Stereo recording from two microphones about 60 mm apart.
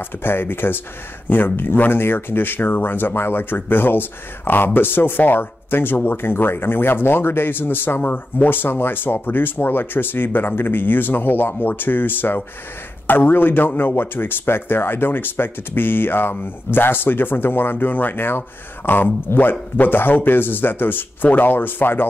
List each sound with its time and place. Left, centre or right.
0.2 s speech: left